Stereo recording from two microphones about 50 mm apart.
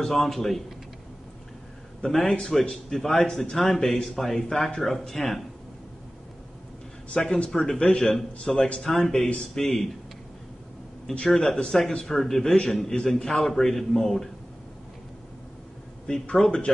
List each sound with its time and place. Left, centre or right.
0.0 s a man's voice: centre
2.2 s a man's voice: centre
7.3 s a man's voice: centre
11.2 s a man's voice: centre
16.1 s a man's voice: centre